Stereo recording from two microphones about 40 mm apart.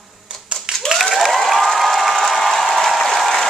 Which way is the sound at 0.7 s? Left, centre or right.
Centre.